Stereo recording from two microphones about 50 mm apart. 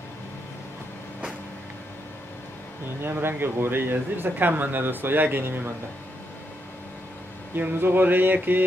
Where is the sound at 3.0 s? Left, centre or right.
Right.